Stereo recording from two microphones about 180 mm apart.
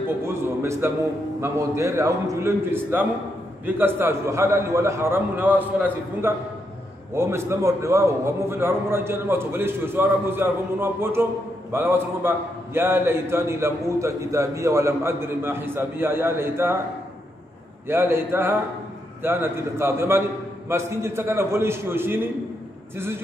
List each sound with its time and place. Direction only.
0.2 s a man's voice: 15° right (ahead or behind)
17.8 s a man's voice: 10° right (ahead or behind)